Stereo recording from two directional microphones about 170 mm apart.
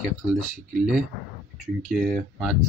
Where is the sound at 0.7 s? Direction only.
5° right (ahead or behind).